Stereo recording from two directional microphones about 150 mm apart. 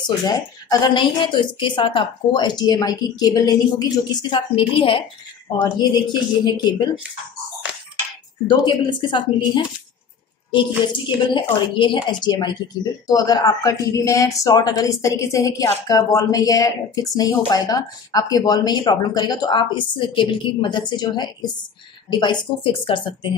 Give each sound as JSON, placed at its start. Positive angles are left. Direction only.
{"t": 0.0, "sound": "a woman's voice", "side_deg": 25}
{"t": 8.5, "sound": "a woman's voice", "side_deg": 30}
{"t": 11.1, "sound": "a woman's voice", "side_deg": 35}